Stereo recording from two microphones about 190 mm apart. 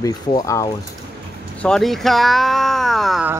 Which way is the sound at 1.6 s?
Centre (ahead or behind).